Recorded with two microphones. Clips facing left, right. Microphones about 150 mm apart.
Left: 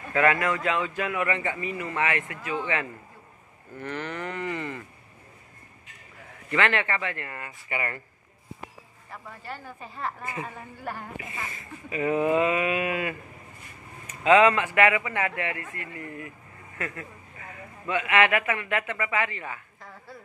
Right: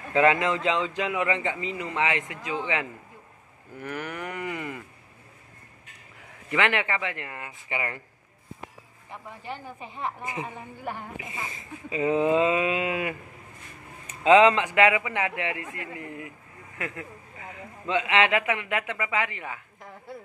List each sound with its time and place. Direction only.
0.1 s a woman's voice: 20° right (ahead or behind)
6.5 s speech: 15° right (ahead or behind)
9.1 s a woman's voice: 15° right (ahead or behind)